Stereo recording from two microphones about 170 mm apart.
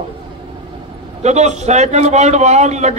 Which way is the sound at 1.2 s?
40° right (ahead or behind).